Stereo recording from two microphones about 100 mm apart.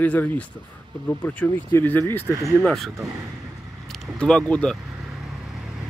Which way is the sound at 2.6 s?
Centre (ahead or behind).